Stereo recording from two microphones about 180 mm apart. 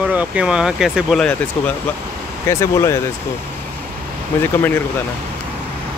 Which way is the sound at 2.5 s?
15° left (ahead or behind).